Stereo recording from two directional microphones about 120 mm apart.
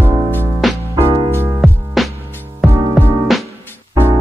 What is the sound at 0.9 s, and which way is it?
Music, 20° right (ahead or behind).